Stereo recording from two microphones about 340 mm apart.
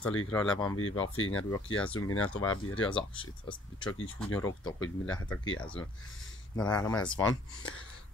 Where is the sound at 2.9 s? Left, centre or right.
Centre.